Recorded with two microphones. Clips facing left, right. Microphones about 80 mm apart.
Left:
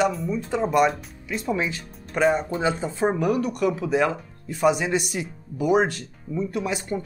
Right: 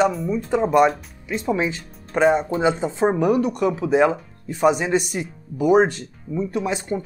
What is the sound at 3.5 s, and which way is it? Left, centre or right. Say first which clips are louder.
Speech: right 3 dB; right.